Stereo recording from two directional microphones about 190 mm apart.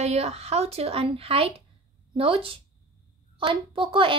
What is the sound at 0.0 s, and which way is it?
A child's voice, 35° right (ahead or behind).